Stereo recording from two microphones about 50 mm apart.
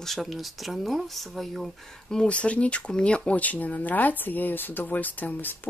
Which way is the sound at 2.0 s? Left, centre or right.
Centre.